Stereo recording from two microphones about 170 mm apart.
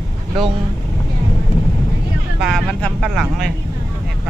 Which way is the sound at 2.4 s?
Centre (ahead or behind).